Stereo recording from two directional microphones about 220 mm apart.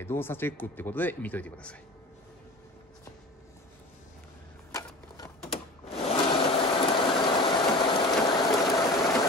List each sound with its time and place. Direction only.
0.0 s speech: 10° left (ahead or behind)
4.7 s a sound: 20° left (ahead or behind)
5.9 s sewing machine: 25° left (ahead or behind)